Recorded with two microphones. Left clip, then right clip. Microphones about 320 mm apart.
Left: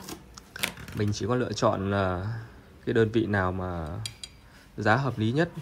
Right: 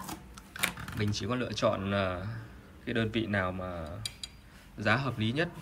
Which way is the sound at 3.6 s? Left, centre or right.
Right.